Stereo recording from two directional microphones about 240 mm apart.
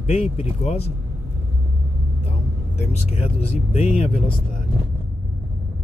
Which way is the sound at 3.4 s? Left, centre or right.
Left.